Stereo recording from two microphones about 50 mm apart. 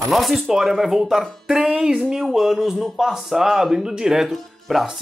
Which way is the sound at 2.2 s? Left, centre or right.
Centre.